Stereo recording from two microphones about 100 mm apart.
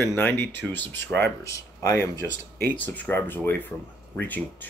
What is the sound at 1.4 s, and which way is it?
Speech, 30° left (ahead or behind).